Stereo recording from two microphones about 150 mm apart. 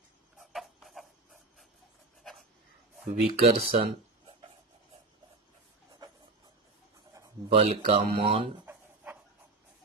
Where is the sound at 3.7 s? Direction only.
40° right (ahead or behind).